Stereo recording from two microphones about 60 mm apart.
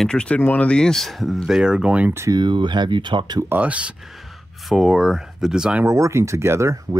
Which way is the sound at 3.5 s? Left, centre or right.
Right.